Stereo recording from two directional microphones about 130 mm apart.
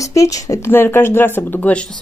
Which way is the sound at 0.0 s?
25° left (ahead or behind).